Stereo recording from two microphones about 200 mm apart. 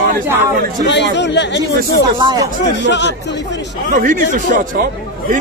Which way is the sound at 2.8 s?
60° left (ahead or behind).